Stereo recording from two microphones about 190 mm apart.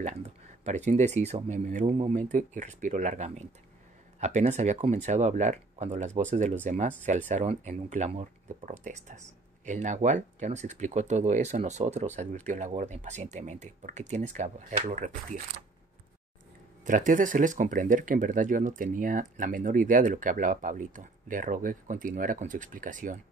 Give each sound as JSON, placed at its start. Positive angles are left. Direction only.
{"t": 0.0, "sound": "speech", "side_deg": -35}
{"t": 16.8, "sound": "speech", "side_deg": -45}